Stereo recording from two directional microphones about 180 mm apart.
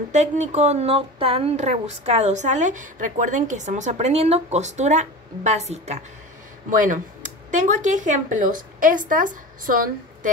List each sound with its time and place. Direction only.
0.1 s a woman's voice: 40° right (ahead or behind)